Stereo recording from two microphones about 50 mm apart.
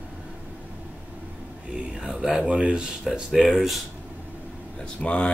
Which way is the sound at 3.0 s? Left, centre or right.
Centre.